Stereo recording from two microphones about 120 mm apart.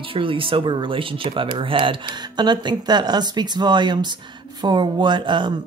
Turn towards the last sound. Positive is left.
turn(degrees=-40)  # may be behind; listen again after turning